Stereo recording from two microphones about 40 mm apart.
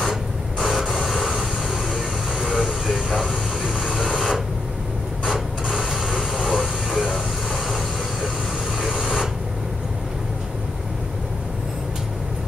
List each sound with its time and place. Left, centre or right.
0.6 s a sound: centre
1.9 s vehicle: centre
5.8 s a sound: centre
6.5 s vehicle: centre
7.1 s vehicle: centre
8.7 s printer: centre